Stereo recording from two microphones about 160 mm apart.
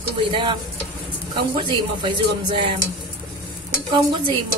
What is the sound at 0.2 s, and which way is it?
Speech, 30° right (ahead or behind).